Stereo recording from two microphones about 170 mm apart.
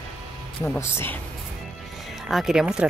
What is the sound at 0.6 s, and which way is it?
Speech, 15° left (ahead or behind).